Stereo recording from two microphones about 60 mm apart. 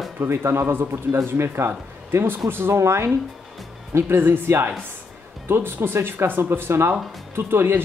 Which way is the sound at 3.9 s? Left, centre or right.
Right.